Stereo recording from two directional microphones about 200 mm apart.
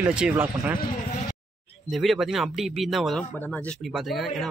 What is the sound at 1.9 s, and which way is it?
Speech, centre (ahead or behind).